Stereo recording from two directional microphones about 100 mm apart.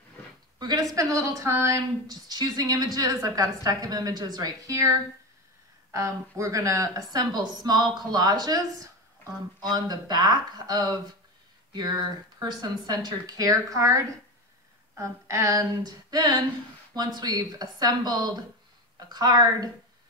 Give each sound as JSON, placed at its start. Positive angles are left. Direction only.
{"t": 0.6, "sound": "a sound", "side_deg": -45}
{"t": 0.9, "sound": "speech", "side_deg": -35}
{"t": 12.4, "sound": "speech", "side_deg": -45}